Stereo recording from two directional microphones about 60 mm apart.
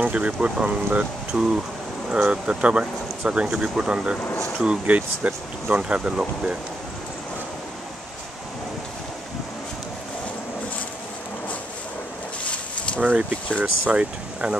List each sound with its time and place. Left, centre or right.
0.0 s speech: right
13.0 s speech: right